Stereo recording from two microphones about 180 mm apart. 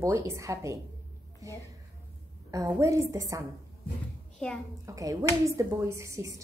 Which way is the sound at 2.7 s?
15° right (ahead or behind).